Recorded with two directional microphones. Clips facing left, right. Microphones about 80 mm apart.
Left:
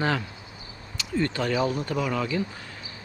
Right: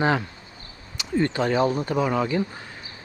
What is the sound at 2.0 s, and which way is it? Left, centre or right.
Speech, right.